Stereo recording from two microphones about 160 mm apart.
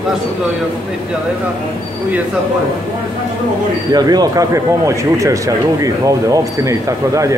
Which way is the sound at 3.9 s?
25° right (ahead or behind).